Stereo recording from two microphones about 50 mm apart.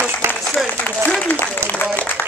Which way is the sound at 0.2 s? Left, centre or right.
Right.